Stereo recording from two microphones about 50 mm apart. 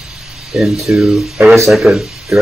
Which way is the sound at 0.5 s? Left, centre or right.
Centre.